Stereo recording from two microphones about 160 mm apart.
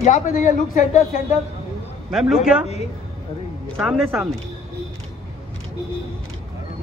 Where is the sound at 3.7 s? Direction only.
5° right (ahead or behind).